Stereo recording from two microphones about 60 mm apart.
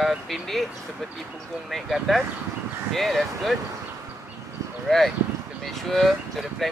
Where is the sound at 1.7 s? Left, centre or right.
Centre.